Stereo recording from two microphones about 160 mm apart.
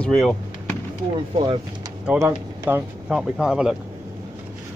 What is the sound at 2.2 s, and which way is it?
Speech, 25° right (ahead or behind).